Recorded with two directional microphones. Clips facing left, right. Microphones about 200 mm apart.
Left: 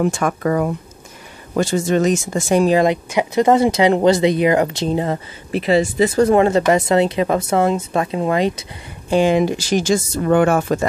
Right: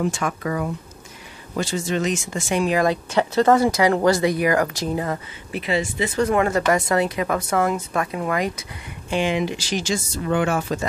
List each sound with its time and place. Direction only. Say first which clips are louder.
0.0 s speech: left 6 dB; 50° left (ahead or behind)
2.8 s speech: left 3 dB; 15° left (ahead or behind)
9.1 s speech: left 7 dB; 40° left (ahead or behind)